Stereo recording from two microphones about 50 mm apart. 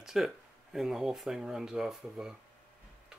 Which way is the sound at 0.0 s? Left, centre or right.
Centre.